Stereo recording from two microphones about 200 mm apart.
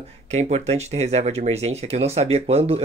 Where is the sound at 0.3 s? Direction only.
35° right (ahead or behind).